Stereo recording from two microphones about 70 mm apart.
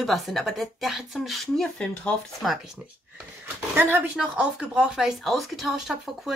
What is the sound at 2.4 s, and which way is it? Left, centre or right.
Speech, centre.